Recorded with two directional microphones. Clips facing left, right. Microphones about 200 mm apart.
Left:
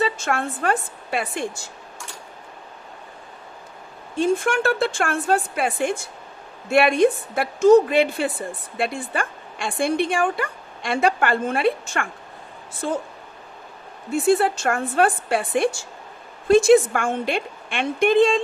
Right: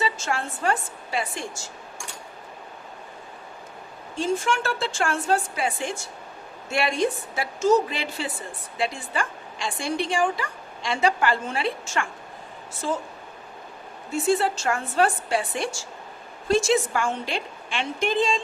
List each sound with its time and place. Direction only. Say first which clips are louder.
0.0 s a woman's voice: left 4 dB; 55° left (ahead or behind)
4.2 s a woman's voice: left 5 dB; 55° left (ahead or behind)
14.1 s a woman's voice: left 4 dB; 55° left (ahead or behind)